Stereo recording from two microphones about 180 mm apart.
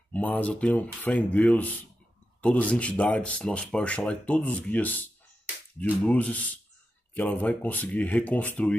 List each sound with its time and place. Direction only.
0.1 s speech: 10° left (ahead or behind)